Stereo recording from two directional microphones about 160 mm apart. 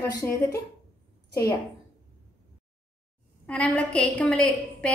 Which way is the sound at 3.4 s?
10° left (ahead or behind).